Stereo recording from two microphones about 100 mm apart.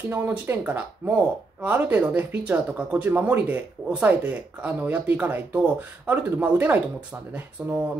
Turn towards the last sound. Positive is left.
turn(degrees=-15)  # may be behind; listen again after turning